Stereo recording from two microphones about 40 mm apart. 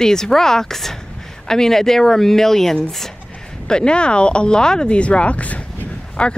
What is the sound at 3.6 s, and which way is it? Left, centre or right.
Speech, left.